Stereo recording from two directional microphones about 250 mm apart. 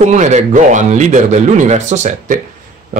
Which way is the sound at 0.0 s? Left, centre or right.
Right.